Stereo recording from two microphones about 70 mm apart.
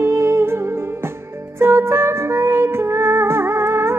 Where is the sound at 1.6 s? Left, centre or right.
Right.